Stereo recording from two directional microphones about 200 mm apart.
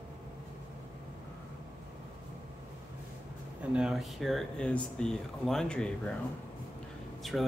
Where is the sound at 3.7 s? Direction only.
5° right (ahead or behind).